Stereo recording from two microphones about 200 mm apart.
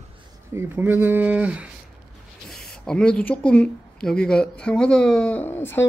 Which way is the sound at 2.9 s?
5° left (ahead or behind).